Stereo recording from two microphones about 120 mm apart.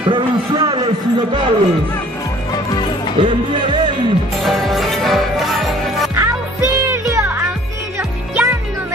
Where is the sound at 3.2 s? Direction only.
45° right (ahead or behind).